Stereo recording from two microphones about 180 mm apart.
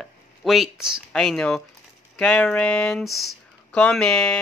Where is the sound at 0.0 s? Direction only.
Centre (ahead or behind).